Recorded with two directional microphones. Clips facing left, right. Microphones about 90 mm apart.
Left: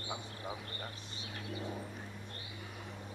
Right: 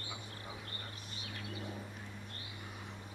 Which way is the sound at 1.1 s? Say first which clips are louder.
Left 2 dB; 25° left (ahead or behind).